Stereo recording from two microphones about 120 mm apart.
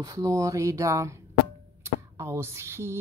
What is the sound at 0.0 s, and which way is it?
Speech, 30° right (ahead or behind).